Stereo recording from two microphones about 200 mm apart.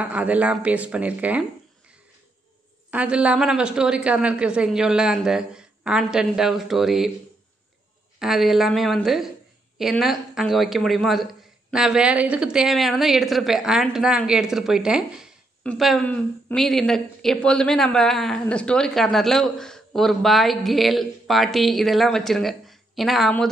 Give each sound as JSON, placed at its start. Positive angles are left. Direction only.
{"t": 0.0, "sound": "speech", "side_deg": -5}
{"t": 2.9, "sound": "speech", "side_deg": -5}
{"t": 8.2, "sound": "speech", "side_deg": 0}